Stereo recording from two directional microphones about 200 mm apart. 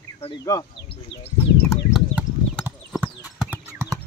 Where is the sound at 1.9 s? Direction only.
5° right (ahead or behind).